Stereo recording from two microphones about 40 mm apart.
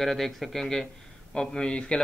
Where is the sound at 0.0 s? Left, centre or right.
Centre.